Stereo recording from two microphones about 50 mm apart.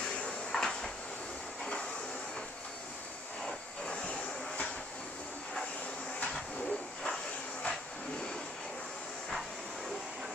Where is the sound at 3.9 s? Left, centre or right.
Left.